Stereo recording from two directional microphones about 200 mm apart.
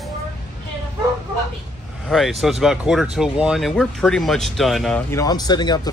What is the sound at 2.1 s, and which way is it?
Speech, centre (ahead or behind).